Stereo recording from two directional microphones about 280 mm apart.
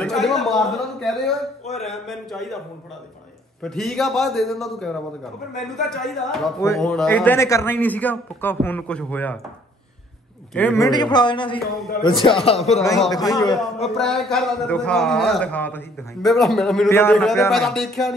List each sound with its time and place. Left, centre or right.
0.0 s a man's voice: centre
3.6 s a man's voice: centre
10.5 s a woman's voice: centre
13.4 s a man's voice: centre